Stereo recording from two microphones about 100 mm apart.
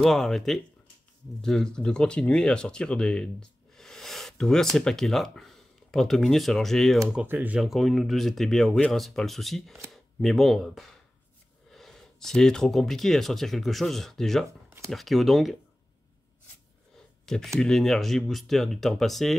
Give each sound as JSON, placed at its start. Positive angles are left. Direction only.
{"t": 0.0, "sound": "speech", "side_deg": 0}
{"t": 7.2, "sound": "speech", "side_deg": -15}
{"t": 7.6, "sound": "speech", "side_deg": 0}
{"t": 17.6, "sound": "speech", "side_deg": 5}